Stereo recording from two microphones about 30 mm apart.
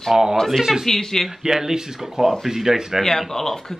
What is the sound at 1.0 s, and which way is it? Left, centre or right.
Speech, centre.